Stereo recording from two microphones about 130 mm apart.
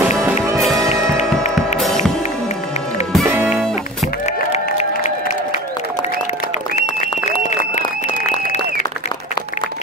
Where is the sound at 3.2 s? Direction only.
15° right (ahead or behind).